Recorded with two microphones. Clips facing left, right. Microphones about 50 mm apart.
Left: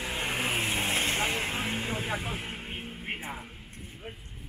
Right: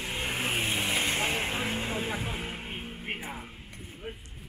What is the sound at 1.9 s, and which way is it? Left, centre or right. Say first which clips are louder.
Vehicle: even; centre.